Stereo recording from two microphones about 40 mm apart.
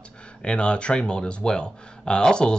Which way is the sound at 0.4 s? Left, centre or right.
Left.